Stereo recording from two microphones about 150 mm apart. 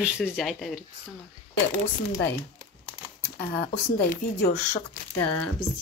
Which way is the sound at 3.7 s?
60° left (ahead or behind).